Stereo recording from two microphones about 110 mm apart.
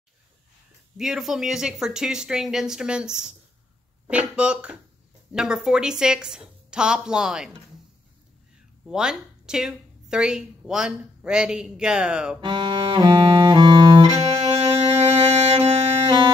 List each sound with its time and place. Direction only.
0.9 s a woman's voice: 5° right (ahead or behind)
8.8 s a woman's voice: 5° right (ahead or behind)
12.4 s music: 45° right (ahead or behind)
14.2 s music: 70° right (ahead or behind)